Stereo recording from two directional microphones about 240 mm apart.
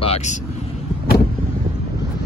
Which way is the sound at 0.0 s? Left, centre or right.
Left.